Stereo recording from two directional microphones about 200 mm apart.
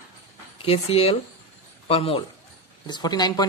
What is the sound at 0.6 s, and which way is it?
Speech, 30° left (ahead or behind).